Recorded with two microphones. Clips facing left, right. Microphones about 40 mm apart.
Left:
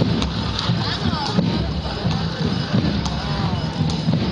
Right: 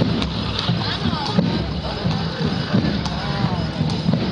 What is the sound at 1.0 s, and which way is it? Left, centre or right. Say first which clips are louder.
Music: right 1 dB; centre.